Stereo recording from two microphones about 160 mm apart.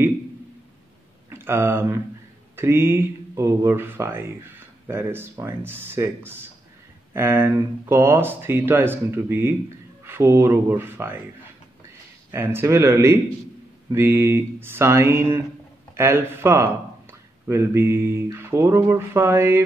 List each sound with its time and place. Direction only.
1.3 s speech: 15° right (ahead or behind)
12.3 s speech: 15° right (ahead or behind)